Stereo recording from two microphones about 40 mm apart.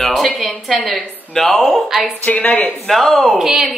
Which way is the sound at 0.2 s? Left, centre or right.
Centre.